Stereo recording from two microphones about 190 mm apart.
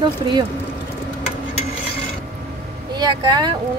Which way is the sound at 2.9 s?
20° right (ahead or behind).